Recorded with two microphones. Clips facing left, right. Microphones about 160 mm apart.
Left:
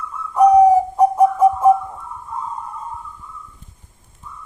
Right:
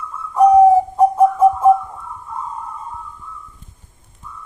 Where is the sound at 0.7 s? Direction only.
10° left (ahead or behind).